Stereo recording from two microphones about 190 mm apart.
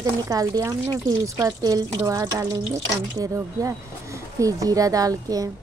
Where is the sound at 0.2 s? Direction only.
20° right (ahead or behind).